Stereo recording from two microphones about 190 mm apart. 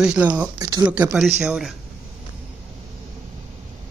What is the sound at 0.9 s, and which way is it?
Speech, 5° right (ahead or behind).